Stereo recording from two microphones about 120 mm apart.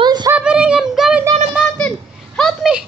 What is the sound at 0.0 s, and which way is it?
Female singing, 35° right (ahead or behind).